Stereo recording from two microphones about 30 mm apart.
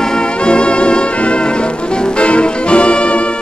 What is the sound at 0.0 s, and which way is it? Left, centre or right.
Music, left.